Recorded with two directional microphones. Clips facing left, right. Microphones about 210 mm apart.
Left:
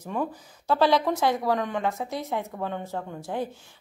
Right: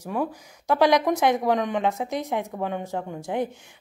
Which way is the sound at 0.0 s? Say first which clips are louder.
Right 2 dB; 10° right (ahead or behind).